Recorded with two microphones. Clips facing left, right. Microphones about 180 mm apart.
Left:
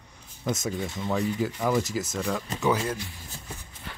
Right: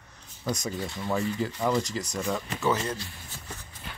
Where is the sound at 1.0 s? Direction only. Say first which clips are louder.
Left 1 dB; 5° left (ahead or behind).